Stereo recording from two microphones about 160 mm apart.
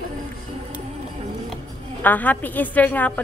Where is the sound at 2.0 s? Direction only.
10° left (ahead or behind).